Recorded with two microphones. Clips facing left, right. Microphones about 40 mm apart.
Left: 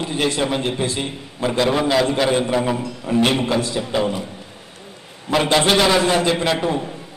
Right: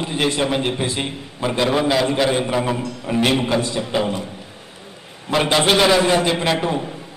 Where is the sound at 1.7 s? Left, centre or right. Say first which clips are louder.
Right 1 dB; centre.